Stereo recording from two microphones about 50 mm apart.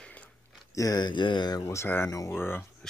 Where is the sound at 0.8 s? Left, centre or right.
Left.